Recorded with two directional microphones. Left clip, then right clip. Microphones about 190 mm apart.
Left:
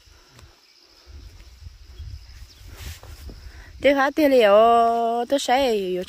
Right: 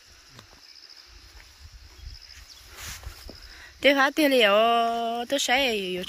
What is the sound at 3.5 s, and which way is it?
Speech, 20° left (ahead or behind).